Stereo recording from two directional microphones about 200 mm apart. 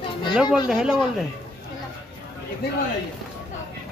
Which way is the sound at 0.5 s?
Centre (ahead or behind).